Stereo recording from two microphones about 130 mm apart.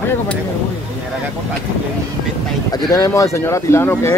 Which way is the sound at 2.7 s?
30° left (ahead or behind).